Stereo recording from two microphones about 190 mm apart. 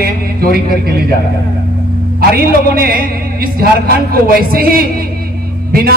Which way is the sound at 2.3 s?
50° right (ahead or behind).